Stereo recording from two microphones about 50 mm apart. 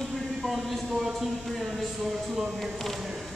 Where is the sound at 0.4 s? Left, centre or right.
Centre.